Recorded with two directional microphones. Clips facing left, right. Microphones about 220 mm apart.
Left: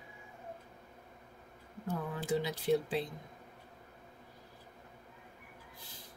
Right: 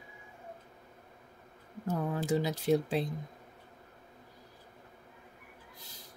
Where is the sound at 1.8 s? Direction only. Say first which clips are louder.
Right 5 dB; 45° right (ahead or behind).